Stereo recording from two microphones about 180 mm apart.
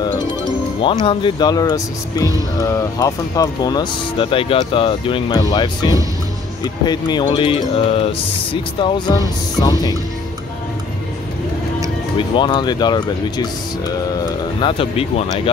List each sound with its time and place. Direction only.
1.0 s speech: 25° left (ahead or behind)
12.2 s speech: 25° left (ahead or behind)